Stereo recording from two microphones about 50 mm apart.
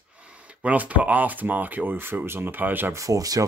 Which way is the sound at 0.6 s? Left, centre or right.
Right.